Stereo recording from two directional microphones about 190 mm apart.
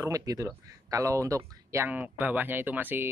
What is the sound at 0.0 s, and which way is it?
Speech, 20° right (ahead or behind).